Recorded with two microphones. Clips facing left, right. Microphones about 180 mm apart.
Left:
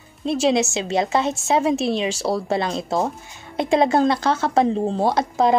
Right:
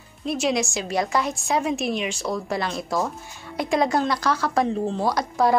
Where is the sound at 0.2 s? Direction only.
30° left (ahead or behind).